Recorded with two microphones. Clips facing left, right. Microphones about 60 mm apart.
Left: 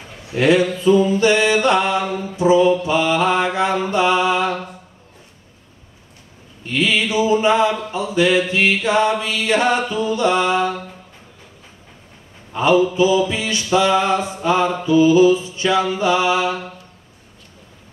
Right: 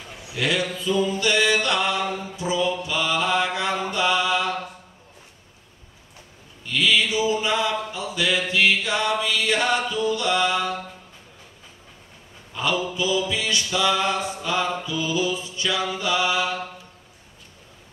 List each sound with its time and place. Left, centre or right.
0.3 s mantra: left
6.6 s a sound: left
12.5 s mantra: left